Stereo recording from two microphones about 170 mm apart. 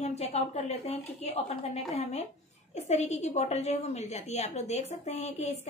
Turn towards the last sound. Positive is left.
turn(degrees=40)  # may be behind; listen again after turning